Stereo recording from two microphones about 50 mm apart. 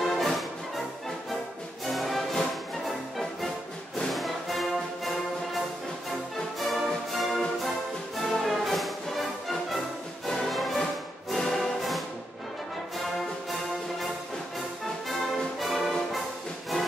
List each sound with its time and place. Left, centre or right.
0.0 s music: centre
1.9 s music: centre
4.1 s brass instrument: centre
6.7 s music: centre
13.0 s music: centre
15.0 s music: centre